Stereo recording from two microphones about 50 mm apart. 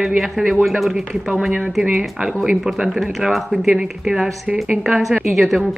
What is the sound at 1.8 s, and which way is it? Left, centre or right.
Speech, right.